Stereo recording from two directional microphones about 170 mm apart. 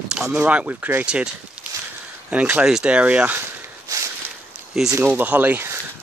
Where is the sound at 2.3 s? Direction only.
5° right (ahead or behind).